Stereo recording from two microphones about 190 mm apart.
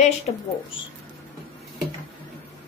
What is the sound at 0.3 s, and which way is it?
Speech, 35° left (ahead or behind).